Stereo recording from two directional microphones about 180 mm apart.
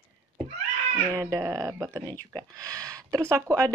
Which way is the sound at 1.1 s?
20° right (ahead or behind).